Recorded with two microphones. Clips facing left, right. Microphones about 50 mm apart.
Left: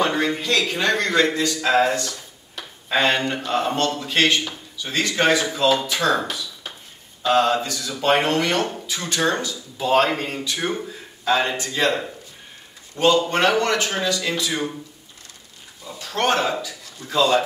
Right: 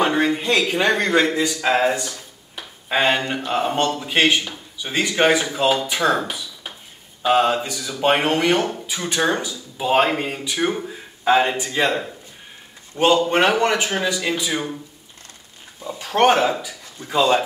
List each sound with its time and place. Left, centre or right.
0.0 s a man's voice: centre
12.9 s speech: centre
15.8 s a man's voice: right